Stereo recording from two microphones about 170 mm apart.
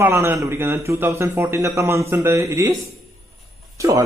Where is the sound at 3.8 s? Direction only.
20° right (ahead or behind).